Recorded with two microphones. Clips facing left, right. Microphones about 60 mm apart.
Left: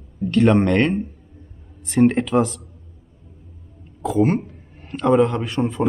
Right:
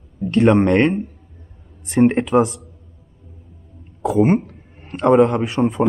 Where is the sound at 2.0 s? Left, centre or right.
Right.